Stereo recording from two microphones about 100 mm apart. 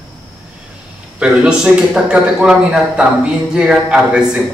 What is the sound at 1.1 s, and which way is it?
A man's voice, 10° right (ahead or behind).